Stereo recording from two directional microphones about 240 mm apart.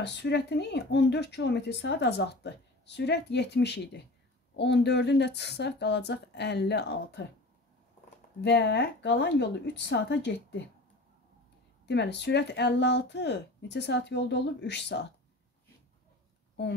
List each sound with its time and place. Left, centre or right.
0.0 s speech: left
8.4 s speech: left
11.8 s speech: left